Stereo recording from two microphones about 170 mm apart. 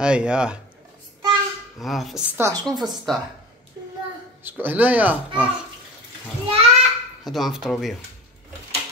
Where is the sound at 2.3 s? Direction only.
15° right (ahead or behind).